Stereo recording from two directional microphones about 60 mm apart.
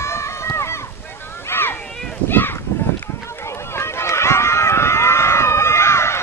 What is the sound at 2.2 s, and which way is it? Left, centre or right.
Speech, left.